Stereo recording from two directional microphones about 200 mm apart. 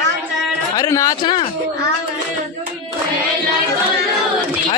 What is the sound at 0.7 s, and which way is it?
Speech, 15° left (ahead or behind).